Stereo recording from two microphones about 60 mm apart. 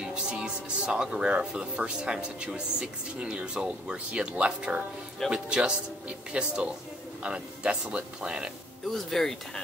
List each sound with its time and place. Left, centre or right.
0.0 s speech: centre
8.9 s speech: centre